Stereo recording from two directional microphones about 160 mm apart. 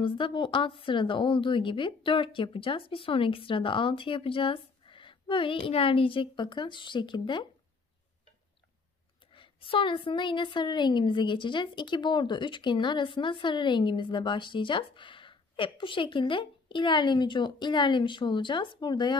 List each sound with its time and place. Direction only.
0.0 s a woman's voice: 30° left (ahead or behind)
9.3 s a woman's voice: 35° left (ahead or behind)